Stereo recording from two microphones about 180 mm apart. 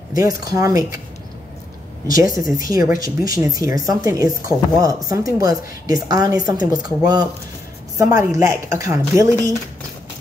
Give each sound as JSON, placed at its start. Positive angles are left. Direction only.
{"t": 0.1, "sound": "a woman's voice", "side_deg": -20}
{"t": 2.0, "sound": "a woman's voice", "side_deg": -20}